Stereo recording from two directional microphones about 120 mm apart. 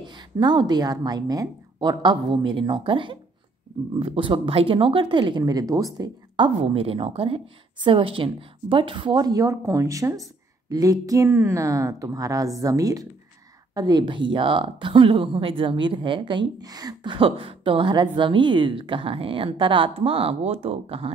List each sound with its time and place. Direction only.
0.0 s a woman's voice: 40° right (ahead or behind)
6.6 s a woman's voice: 50° right (ahead or behind)